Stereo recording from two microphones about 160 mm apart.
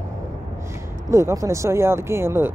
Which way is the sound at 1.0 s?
20° right (ahead or behind).